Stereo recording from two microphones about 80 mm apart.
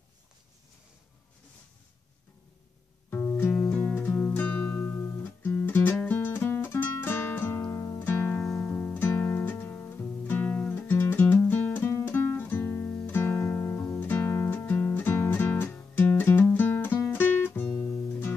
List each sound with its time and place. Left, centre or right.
3.1 s music: left
8.0 s music: left
8.5 s music: centre; by 18.3 s left